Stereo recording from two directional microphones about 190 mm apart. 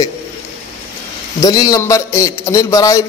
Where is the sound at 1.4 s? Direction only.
20° left (ahead or behind).